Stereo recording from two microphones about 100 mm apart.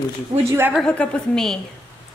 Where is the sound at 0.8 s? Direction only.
10° left (ahead or behind).